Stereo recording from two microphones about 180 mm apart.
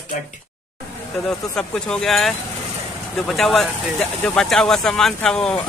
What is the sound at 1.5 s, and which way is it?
Speech, 5° left (ahead or behind).